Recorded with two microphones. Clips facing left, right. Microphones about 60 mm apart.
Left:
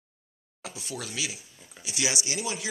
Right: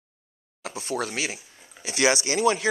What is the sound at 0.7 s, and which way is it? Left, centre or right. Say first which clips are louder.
Speech: right 9 dB; right.